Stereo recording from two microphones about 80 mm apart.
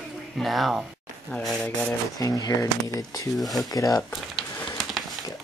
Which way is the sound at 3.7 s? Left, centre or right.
Left.